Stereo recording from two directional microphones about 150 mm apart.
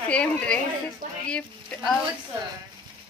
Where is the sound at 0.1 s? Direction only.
10° left (ahead or behind).